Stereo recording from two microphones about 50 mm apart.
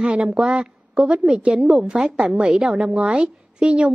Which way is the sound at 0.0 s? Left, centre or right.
Centre.